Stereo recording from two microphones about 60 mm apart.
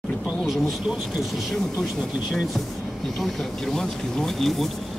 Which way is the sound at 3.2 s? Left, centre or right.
Centre.